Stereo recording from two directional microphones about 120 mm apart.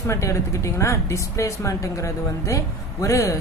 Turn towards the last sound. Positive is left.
turn(degrees=25)  # may be behind; listen again after turning